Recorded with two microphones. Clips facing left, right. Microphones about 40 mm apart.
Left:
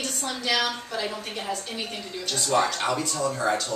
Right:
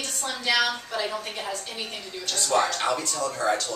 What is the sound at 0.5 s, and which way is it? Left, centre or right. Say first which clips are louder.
Speech: right 3 dB; centre.